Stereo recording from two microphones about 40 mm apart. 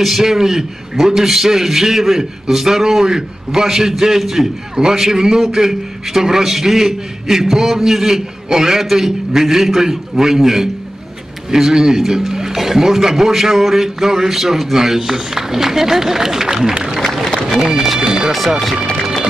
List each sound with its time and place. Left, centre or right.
0.0 s a man's voice: centre
17.0 s run: centre
17.6 s a man's voice: centre